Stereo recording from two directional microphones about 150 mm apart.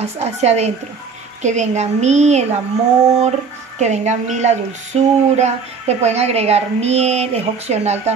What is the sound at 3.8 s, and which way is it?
A woman's voice, 50° right (ahead or behind).